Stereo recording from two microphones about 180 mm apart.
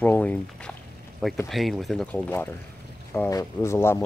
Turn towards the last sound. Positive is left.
turn(degrees=15)  # may be behind; listen again after turning